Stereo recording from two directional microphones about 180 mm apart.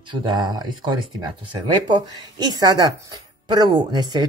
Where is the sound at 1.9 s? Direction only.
25° right (ahead or behind).